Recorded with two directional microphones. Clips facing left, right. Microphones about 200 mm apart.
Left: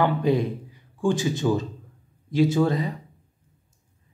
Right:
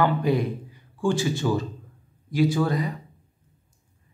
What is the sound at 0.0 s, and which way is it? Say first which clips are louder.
Speech: left 1 dB; 25° left (ahead or behind).